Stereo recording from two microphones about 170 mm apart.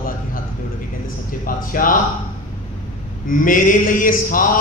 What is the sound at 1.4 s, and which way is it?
Speech, 55° left (ahead or behind).